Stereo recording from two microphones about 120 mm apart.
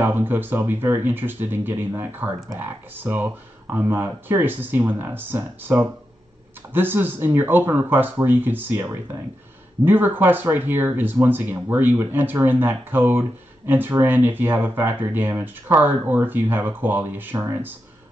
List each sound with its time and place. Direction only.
0.0 s speech: 15° right (ahead or behind)